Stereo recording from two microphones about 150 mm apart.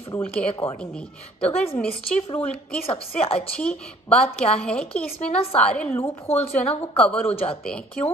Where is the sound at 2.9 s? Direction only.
40° left (ahead or behind).